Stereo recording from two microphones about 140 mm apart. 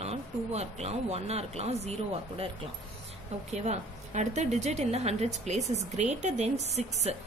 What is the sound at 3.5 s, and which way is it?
A woman's voice, 55° right (ahead or behind).